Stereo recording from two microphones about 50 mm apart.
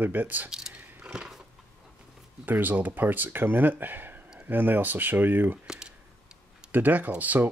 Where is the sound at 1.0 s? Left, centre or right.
Centre.